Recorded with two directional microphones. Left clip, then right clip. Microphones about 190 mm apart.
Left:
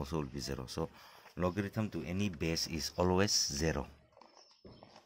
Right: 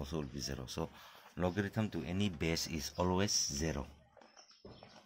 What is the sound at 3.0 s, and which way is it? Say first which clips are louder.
Speech: left 3 dB; 35° left (ahead or behind).